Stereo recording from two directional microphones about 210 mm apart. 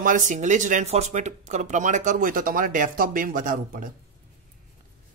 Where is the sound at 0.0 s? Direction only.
35° right (ahead or behind).